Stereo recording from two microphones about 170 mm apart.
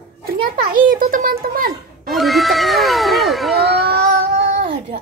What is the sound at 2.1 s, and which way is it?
Cat, centre (ahead or behind).